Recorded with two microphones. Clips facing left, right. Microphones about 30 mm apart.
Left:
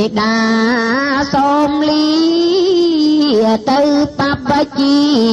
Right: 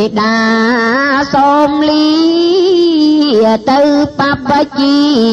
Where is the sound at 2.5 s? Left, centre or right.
Centre.